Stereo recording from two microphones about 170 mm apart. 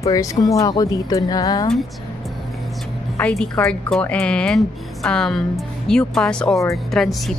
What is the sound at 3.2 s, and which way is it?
A woman's voice, 5° left (ahead or behind).